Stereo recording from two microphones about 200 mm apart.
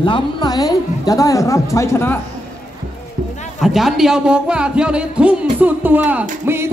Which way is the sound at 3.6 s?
Centre (ahead or behind).